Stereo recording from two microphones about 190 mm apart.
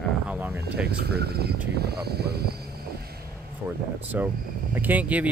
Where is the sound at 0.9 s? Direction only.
60° right (ahead or behind).